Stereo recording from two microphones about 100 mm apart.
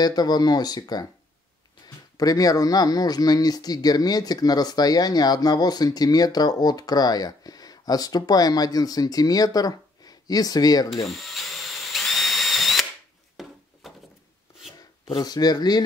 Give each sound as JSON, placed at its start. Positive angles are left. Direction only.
{"t": 0.0, "sound": "speech", "side_deg": 40}
{"t": 2.1, "sound": "speech", "side_deg": 40}
{"t": 11.1, "sound": "drill", "side_deg": 0}
{"t": 13.4, "sound": "a sound", "side_deg": 0}
{"t": 15.0, "sound": "speech", "side_deg": 45}